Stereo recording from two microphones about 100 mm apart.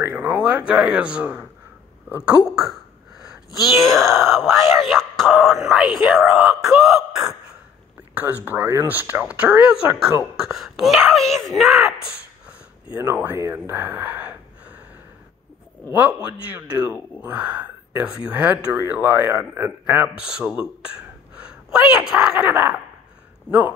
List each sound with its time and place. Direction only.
0.0 s speech: 20° right (ahead or behind)
3.2 s speech: centre (ahead or behind)
8.1 s speech: 20° right (ahead or behind); by 11.9 s centre (ahead or behind)
12.9 s speech: 25° right (ahead or behind)
13.7 s gasp: 20° right (ahead or behind)
15.9 s speech: 15° right (ahead or behind)
20.2 s speech: 10° right (ahead or behind)
21.7 s speech: 10° right (ahead or behind)
22.4 s speech: 20° right (ahead or behind)